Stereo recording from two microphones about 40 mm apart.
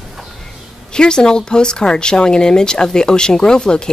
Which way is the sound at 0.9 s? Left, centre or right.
Centre.